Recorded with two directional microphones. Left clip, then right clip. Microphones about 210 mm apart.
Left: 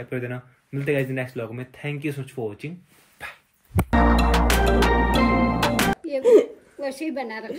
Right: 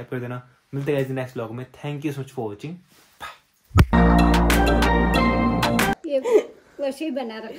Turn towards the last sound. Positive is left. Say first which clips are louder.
# right 1 dB
turn(degrees=-10)  # may be behind; listen again after turning